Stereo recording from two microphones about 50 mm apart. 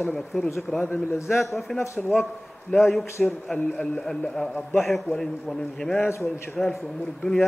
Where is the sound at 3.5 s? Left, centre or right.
Left.